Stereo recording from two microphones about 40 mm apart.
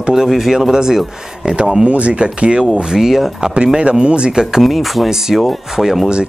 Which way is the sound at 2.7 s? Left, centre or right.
Centre.